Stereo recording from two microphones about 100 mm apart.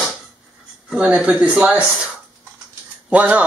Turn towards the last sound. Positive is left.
turn(degrees=-15)  # may be behind; listen again after turning